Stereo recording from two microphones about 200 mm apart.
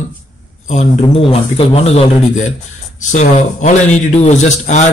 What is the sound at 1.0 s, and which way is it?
Speech, 30° left (ahead or behind).